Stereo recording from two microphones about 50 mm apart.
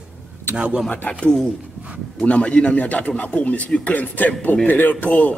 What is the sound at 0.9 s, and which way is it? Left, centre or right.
Speech, left.